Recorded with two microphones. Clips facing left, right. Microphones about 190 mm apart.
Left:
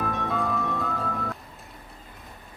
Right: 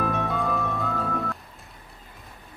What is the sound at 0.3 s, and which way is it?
Music, centre (ahead or behind).